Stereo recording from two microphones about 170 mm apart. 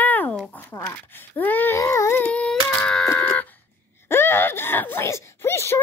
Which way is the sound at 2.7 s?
5° left (ahead or behind).